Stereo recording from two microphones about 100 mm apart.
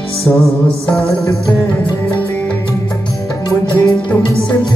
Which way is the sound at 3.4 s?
45° left (ahead or behind).